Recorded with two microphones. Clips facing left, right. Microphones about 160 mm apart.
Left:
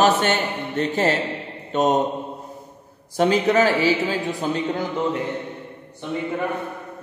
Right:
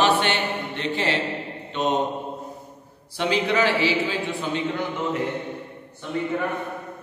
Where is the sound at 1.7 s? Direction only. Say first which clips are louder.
Left 5 dB; 45° left (ahead or behind).